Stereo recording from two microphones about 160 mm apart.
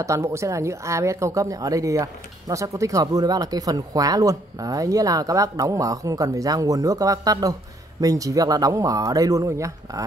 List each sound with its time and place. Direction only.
0.0 s speech: 20° right (ahead or behind)